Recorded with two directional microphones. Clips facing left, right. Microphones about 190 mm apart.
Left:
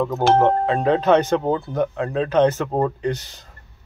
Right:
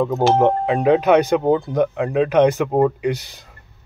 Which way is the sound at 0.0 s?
15° right (ahead or behind).